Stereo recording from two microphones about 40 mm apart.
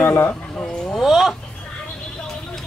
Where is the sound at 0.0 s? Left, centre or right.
Left.